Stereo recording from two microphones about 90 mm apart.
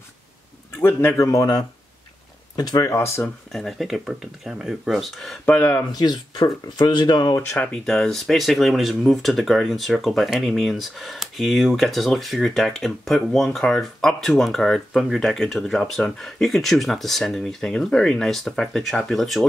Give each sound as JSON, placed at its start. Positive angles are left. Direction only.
{"t": 0.8, "sound": "speech", "side_deg": 30}
{"t": 2.9, "sound": "speech", "side_deg": 30}
{"t": 3.5, "sound": "speech", "side_deg": 0}
{"t": 5.6, "sound": "speech", "side_deg": 30}
{"t": 5.9, "sound": "speech", "side_deg": 50}
{"t": 7.5, "sound": "speech", "side_deg": 15}